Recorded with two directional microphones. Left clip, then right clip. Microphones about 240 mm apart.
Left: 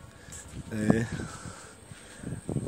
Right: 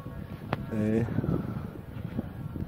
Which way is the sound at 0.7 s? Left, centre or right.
Centre.